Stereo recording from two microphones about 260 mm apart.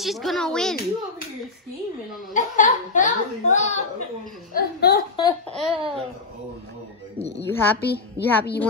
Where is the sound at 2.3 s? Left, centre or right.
Left.